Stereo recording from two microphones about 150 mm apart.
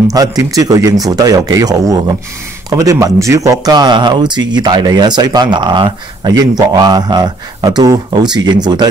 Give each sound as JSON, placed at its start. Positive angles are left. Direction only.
{"t": 0.1, "sound": "speech", "side_deg": -25}